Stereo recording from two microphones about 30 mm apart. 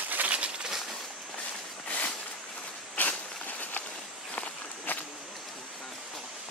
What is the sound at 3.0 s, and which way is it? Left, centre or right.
Walk, left.